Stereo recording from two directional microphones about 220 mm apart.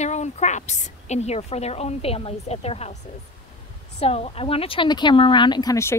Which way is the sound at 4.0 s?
25° left (ahead or behind).